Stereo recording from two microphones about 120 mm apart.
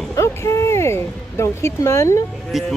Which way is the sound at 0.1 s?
25° left (ahead or behind).